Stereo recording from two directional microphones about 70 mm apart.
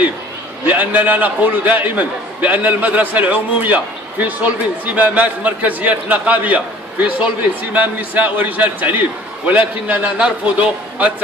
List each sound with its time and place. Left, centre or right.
0.7 s a man's voice: right